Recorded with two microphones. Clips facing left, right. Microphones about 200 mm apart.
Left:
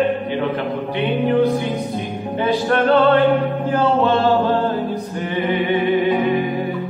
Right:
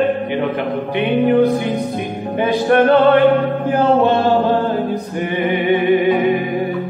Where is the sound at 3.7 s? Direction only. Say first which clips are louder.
Right 3 dB; 15° right (ahead or behind).